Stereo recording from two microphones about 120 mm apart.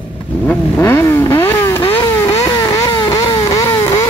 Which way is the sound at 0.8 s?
20° left (ahead or behind).